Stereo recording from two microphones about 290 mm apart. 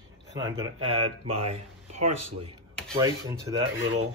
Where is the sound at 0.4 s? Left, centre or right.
Centre.